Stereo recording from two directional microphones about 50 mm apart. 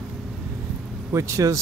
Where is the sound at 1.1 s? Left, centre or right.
Right.